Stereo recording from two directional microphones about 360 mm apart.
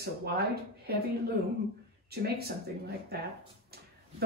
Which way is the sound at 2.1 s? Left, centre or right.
Right.